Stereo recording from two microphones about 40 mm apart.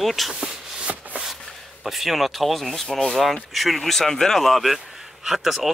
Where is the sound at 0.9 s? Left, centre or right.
Right.